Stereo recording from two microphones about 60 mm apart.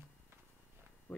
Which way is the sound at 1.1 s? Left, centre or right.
Left.